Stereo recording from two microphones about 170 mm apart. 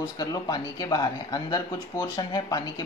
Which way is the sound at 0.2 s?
20° left (ahead or behind).